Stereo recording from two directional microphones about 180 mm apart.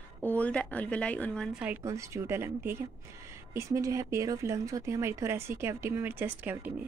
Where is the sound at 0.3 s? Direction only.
5° left (ahead or behind).